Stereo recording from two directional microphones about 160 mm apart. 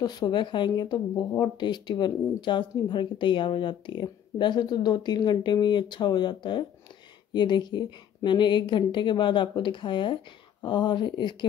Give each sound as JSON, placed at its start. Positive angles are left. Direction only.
{"t": 0.0, "sound": "speech", "side_deg": 25}